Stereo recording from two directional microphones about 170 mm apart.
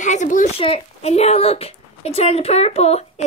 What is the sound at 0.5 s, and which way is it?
A woman's voice, 35° left (ahead or behind).